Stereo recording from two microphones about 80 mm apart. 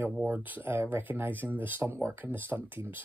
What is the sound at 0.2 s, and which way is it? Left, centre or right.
Speech, right.